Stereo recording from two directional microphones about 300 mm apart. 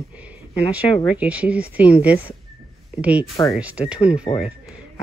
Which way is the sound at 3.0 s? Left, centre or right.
Centre.